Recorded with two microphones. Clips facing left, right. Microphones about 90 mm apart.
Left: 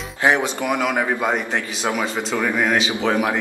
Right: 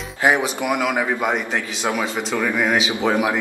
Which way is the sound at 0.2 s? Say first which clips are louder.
Even; 10° right (ahead or behind).